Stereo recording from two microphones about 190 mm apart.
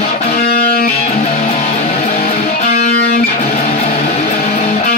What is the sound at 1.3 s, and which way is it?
Music, 30° left (ahead or behind).